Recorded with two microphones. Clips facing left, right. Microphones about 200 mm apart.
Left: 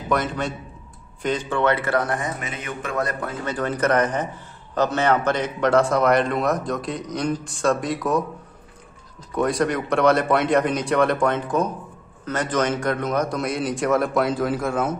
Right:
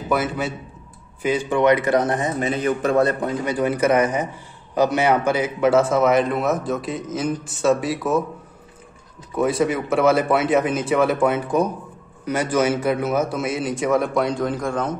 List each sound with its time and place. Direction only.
0.1 s a man's voice: 5° right (ahead or behind)
9.3 s a man's voice: 5° right (ahead or behind)